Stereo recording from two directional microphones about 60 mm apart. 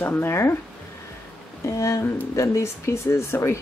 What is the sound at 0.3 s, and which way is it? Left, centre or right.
Speech, left.